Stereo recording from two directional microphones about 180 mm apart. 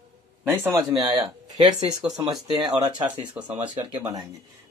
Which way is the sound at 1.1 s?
25° right (ahead or behind).